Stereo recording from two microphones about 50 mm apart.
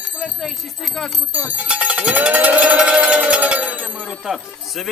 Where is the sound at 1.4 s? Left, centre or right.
Right.